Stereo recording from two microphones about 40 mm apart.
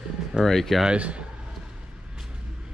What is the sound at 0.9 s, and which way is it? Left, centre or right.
Speech, right.